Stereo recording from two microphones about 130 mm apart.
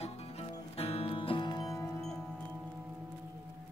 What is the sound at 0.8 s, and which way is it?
Music, 50° left (ahead or behind).